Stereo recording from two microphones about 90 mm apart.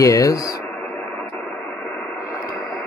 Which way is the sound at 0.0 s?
40° left (ahead or behind).